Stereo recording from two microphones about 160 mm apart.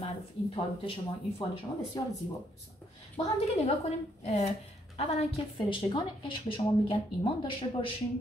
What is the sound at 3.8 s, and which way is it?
A woman's voice, 40° left (ahead or behind).